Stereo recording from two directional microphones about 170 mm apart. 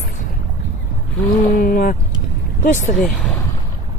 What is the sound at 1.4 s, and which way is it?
Speech, 55° left (ahead or behind).